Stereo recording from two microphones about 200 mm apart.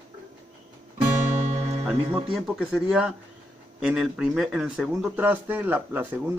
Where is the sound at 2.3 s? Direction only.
Centre (ahead or behind).